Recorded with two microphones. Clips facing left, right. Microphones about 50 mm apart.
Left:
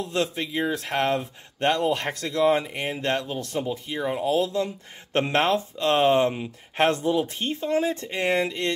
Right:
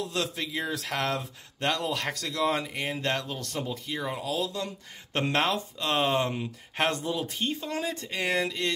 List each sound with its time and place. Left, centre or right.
0.0 s speech: left
4.3 s speech: left